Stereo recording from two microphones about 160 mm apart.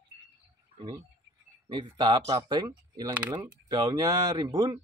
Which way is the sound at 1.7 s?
25° right (ahead or behind).